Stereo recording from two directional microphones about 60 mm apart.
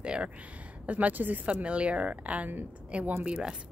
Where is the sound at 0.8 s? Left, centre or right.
Right.